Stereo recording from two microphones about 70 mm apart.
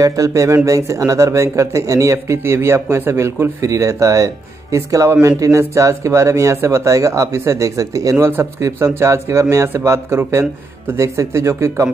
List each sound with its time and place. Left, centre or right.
0.0 s speech: right
3.6 s speech: right